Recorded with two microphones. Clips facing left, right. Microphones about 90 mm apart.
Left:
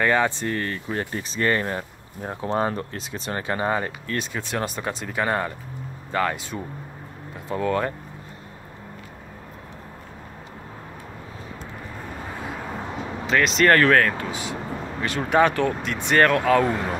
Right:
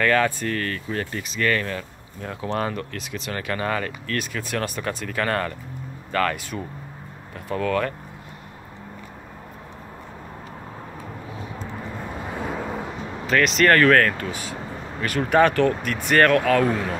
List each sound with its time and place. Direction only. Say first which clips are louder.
0.0 s speech: right 1 dB; 20° left (ahead or behind)
7.4 s speech: even; 20° left (ahead or behind)
13.3 s speech: even; 25° left (ahead or behind)